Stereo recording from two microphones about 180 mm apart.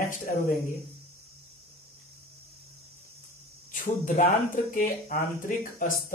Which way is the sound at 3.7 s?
45° left (ahead or behind).